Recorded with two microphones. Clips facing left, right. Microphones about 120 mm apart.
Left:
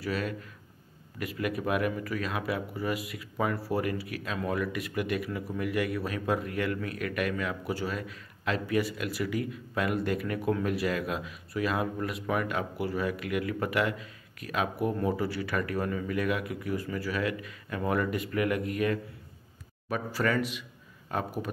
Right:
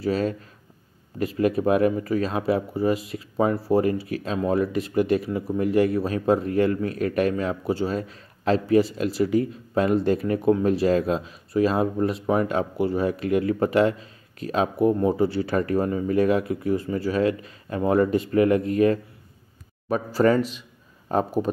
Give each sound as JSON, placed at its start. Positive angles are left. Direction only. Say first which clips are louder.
{"t": 0.0, "sound": "speech", "louder": "right 8 dB", "side_deg": -30}